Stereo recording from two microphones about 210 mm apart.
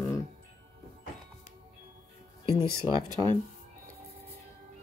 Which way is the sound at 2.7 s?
15° right (ahead or behind).